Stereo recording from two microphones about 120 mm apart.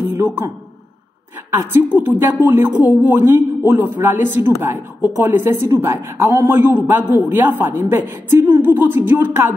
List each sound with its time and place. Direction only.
1.5 s a woman's voice: 15° right (ahead or behind)